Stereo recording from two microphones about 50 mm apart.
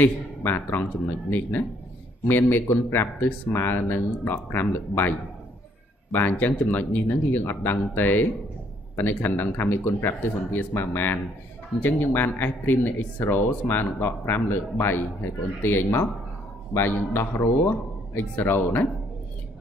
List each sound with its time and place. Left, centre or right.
0.0 s a man's voice: left
2.2 s speech: left
6.1 s speech: left